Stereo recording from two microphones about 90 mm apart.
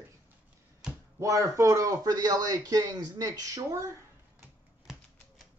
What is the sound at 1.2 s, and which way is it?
Speech, 35° right (ahead or behind).